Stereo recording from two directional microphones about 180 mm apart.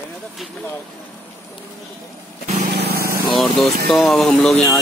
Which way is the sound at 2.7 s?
60° right (ahead or behind).